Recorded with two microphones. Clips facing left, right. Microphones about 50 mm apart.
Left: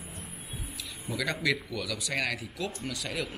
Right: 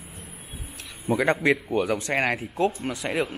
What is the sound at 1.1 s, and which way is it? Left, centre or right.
Speech, right.